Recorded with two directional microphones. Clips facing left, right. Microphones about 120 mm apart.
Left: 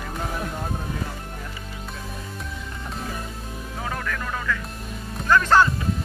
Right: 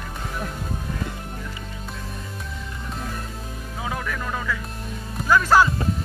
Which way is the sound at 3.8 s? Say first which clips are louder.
Right 1 dB; 10° right (ahead or behind).